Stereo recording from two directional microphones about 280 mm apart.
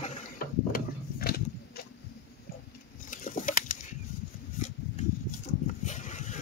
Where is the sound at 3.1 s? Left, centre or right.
Left.